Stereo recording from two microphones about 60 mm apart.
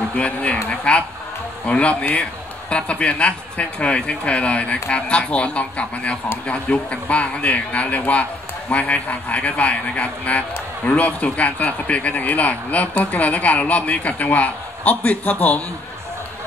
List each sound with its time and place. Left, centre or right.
0.1 s speech: left